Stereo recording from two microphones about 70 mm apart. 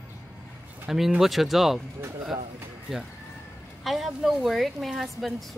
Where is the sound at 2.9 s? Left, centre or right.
Centre.